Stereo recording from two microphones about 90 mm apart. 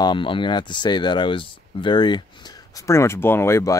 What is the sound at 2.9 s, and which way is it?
Speech, 30° left (ahead or behind).